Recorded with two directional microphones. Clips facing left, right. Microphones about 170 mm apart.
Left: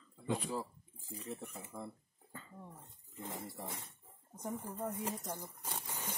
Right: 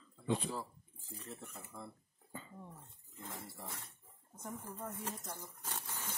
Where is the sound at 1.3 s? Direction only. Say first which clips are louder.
Left 5 dB; 15° left (ahead or behind).